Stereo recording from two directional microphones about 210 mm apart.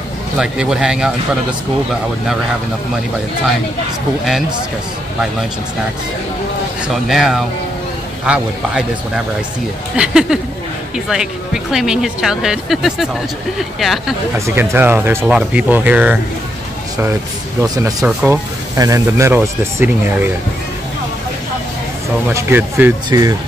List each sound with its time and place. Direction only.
0.4 s speech: 5° right (ahead or behind)
6.9 s speech: centre (ahead or behind)
14.4 s speech: 10° right (ahead or behind)
17.6 s speech: 15° right (ahead or behind)
22.3 s speech: 10° right (ahead or behind)